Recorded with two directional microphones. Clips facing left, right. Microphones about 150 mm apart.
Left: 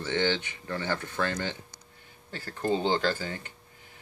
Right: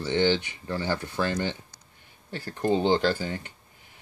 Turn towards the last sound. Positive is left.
turn(degrees=-15)  # may be behind; listen again after turning